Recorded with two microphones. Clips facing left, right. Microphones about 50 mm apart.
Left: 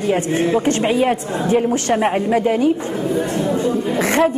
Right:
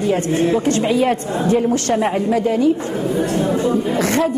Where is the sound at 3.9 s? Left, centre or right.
Left.